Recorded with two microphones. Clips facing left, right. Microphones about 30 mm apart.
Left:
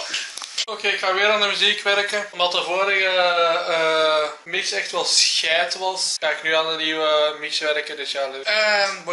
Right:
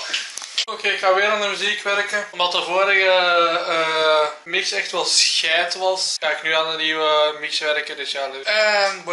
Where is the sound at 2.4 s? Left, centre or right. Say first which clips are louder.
Right 2 dB; centre.